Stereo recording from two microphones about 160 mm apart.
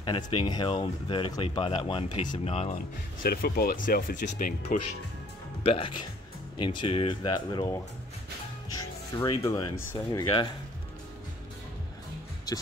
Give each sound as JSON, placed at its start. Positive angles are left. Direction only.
{"t": 0.0, "sound": "speech", "side_deg": 30}
{"t": 3.2, "sound": "speech", "side_deg": 70}
{"t": 5.6, "sound": "speech", "side_deg": 35}
{"t": 9.1, "sound": "speech", "side_deg": 25}
{"t": 12.5, "sound": "music", "side_deg": 25}